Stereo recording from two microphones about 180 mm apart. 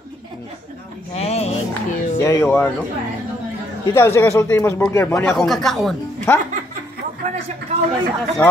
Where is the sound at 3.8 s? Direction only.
15° left (ahead or behind).